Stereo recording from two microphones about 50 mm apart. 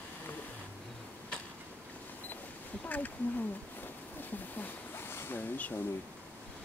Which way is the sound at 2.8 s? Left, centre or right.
Left.